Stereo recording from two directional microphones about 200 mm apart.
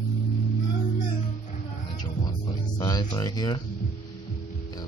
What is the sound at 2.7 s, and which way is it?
Speech, 20° left (ahead or behind).